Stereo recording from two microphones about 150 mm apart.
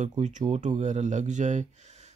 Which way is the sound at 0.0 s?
55° right (ahead or behind).